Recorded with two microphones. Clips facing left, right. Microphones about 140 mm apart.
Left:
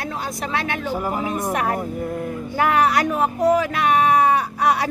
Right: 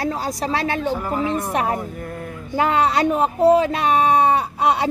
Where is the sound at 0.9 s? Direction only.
10° left (ahead or behind).